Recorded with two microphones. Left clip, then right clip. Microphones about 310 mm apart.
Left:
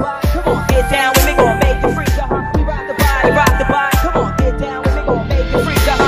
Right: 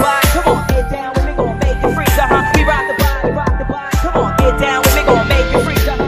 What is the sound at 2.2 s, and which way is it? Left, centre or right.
Music, right.